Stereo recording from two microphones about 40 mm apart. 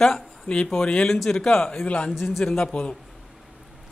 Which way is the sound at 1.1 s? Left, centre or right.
Centre.